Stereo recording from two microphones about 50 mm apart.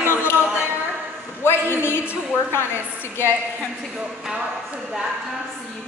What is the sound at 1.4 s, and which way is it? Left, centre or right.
A man's voice, left.